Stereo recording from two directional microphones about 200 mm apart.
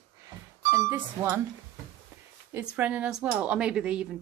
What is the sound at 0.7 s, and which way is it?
Speech, 10° right (ahead or behind).